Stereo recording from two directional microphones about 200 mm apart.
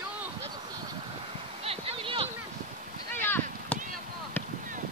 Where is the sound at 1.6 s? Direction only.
30° right (ahead or behind).